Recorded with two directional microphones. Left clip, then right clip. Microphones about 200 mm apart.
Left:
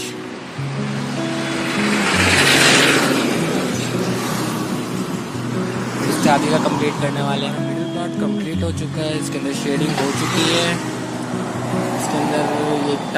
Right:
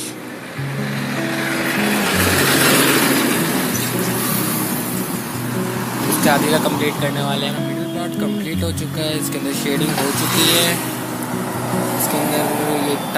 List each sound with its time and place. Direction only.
1.9 s music: 40° right (ahead or behind)
2.7 s vehicle: 50° right (ahead or behind)
6.2 s speech: centre (ahead or behind)